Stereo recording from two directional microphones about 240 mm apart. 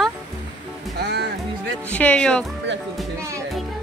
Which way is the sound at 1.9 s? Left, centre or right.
Centre.